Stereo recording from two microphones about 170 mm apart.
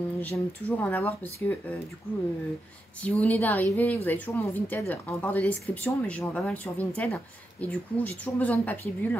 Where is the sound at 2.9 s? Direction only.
10° left (ahead or behind).